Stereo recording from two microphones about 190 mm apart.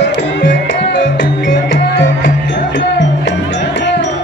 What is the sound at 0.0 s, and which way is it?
Music, 70° left (ahead or behind).